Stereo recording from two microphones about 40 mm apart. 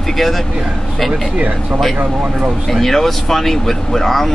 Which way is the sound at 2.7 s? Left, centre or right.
Centre.